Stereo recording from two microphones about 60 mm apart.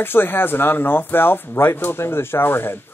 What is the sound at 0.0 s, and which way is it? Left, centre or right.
Speech, left.